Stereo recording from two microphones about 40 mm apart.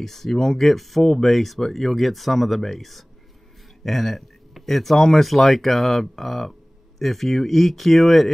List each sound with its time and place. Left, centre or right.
0.0 s speech: centre